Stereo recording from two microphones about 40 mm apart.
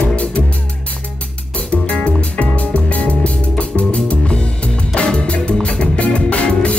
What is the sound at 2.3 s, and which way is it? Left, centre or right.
Music, left.